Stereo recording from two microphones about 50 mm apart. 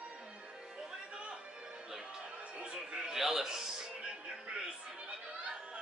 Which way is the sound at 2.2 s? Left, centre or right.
Centre.